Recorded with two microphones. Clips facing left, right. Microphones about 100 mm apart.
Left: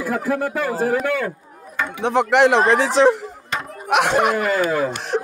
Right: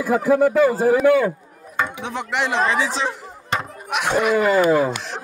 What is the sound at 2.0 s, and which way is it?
Speech, 70° left (ahead or behind).